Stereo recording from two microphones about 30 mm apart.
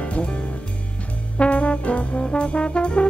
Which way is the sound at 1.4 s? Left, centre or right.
Left.